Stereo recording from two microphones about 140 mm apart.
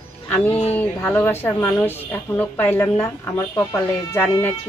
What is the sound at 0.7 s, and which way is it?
A woman's voice, 15° left (ahead or behind).